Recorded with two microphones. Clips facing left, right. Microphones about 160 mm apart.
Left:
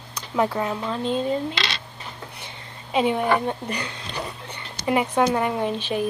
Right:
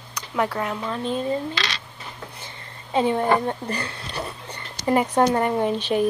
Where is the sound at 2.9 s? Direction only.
10° left (ahead or behind).